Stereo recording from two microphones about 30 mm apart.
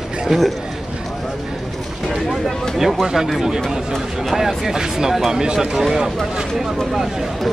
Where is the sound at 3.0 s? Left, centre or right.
Centre.